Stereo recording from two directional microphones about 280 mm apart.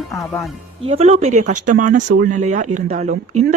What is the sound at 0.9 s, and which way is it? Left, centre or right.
Speech, right.